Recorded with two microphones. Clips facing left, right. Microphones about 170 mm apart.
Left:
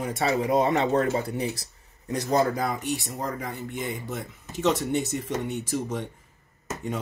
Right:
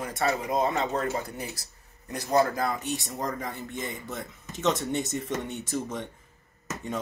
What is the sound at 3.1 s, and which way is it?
Speech, 5° left (ahead or behind).